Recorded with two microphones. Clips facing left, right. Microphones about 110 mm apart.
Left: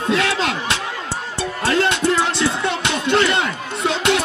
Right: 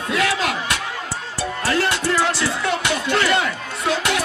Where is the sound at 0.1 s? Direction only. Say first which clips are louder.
Left 1 dB; 25° left (ahead or behind).